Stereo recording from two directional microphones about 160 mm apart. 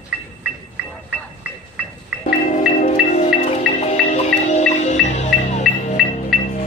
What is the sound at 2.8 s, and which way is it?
Music, 50° left (ahead or behind).